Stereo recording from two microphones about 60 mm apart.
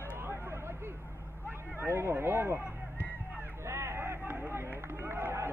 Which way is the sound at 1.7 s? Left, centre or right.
Right.